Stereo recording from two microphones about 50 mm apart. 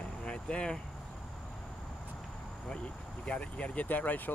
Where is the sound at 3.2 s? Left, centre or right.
Left.